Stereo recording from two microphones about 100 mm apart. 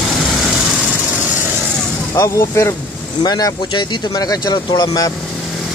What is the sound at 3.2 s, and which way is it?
Speech, 40° left (ahead or behind).